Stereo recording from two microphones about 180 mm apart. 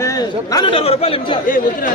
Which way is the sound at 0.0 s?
20° left (ahead or behind).